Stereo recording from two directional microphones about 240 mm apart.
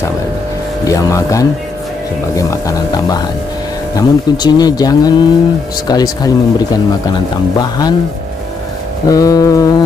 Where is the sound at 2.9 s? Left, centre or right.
Centre.